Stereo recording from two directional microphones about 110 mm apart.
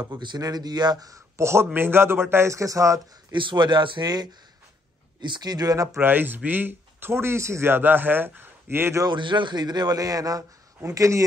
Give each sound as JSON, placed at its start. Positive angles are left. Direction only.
{"t": 0.1, "sound": "speech", "side_deg": -40}
{"t": 3.3, "sound": "a man's voice", "side_deg": -45}
{"t": 5.9, "sound": "speech", "side_deg": -15}
{"t": 9.0, "sound": "a man's voice", "side_deg": -45}